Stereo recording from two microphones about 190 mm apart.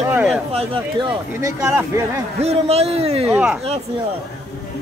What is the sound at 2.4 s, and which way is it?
Speech, 35° right (ahead or behind).